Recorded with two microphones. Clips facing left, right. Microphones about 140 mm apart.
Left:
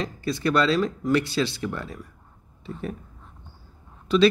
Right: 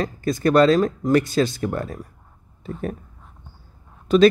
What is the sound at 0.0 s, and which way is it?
Speech, 45° right (ahead or behind).